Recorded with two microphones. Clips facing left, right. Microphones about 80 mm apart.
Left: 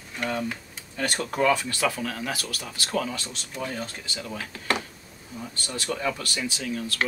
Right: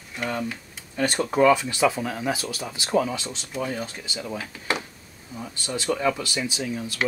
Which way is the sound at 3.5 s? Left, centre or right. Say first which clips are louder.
Right 3 dB; centre.